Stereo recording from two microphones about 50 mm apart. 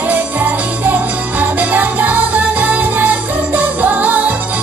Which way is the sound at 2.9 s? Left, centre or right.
Right.